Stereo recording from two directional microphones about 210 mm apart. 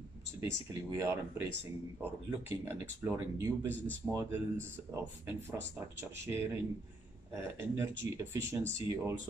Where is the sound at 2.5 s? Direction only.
15° right (ahead or behind).